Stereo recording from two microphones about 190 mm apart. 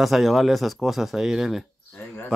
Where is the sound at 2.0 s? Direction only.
10° left (ahead or behind).